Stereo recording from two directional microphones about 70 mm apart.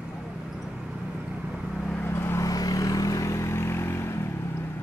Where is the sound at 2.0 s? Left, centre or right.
Left.